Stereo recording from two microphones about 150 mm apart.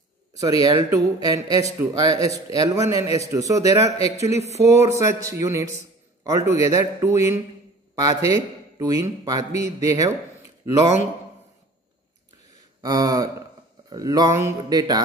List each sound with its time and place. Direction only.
0.4 s a man's voice: 25° right (ahead or behind)
4.4 s speech: 45° right (ahead or behind)
4.6 s a man's voice: 20° right (ahead or behind)
12.8 s a man's voice: 25° right (ahead or behind)